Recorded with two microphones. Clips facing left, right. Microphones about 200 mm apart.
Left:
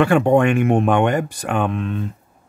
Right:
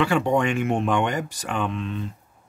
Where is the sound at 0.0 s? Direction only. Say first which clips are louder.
Left 6 dB; 55° left (ahead or behind).